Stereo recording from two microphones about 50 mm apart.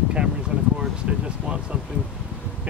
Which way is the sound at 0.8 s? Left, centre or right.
Right.